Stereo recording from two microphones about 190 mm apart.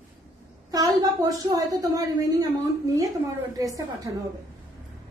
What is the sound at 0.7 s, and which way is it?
A woman's voice, 20° right (ahead or behind).